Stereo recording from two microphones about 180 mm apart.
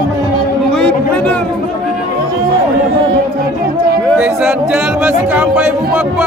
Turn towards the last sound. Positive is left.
turn(degrees=-5)  # may be behind; listen again after turning